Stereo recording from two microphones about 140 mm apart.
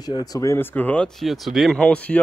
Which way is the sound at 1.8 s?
10° left (ahead or behind).